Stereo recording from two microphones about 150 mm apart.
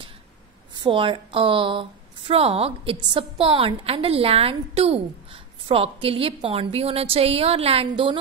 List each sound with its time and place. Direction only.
0.7 s speech: 35° right (ahead or behind)